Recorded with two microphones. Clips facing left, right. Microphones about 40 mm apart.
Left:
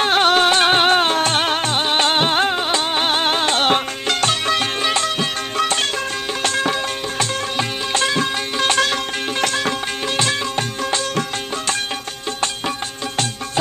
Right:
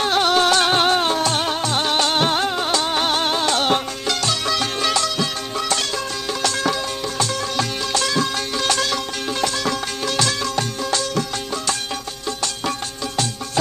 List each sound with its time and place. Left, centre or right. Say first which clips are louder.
0.0 s music: left 2 dB; left
1.8 s music: left 1 dB; left
6.4 s music: left 2 dB; left